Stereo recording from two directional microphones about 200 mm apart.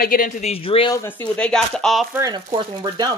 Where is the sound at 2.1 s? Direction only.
20° right (ahead or behind).